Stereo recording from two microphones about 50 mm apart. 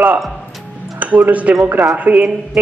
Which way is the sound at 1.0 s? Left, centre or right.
Right.